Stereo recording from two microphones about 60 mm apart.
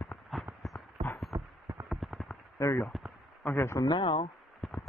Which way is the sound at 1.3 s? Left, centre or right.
Right.